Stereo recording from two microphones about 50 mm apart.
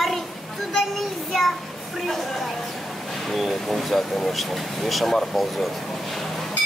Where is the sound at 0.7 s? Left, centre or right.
Centre.